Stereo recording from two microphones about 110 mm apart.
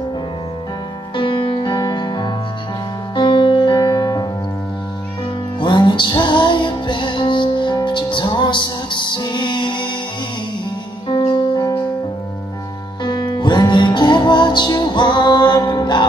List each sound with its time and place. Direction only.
1.1 s music: 50° left (ahead or behind)
5.6 s music: 45° left (ahead or behind)
11.1 s music: 35° left (ahead or behind)
13.0 s music: 45° left (ahead or behind)